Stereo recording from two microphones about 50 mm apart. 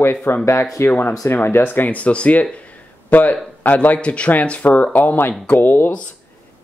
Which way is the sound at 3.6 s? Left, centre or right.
Left.